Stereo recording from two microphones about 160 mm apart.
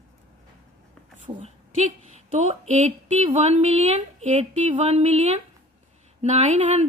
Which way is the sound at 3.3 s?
40° right (ahead or behind).